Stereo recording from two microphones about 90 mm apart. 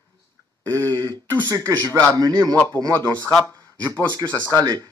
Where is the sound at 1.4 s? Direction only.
40° right (ahead or behind).